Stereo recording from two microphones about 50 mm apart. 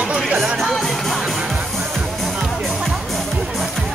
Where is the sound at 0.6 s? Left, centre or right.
Centre.